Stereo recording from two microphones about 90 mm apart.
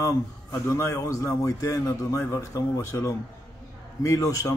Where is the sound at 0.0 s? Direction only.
35° left (ahead or behind).